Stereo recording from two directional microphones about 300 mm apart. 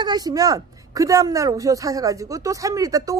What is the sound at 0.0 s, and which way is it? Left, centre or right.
Speech, centre.